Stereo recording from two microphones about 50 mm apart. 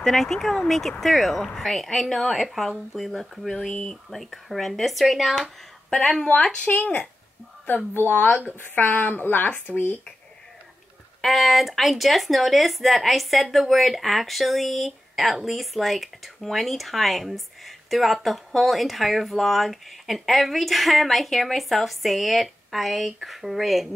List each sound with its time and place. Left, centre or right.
0.0 s speech: centre
6.4 s speech: centre
6.7 s speech: left
11.1 s speech: centre